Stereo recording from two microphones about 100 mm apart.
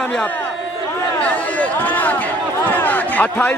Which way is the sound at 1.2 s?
15° left (ahead or behind).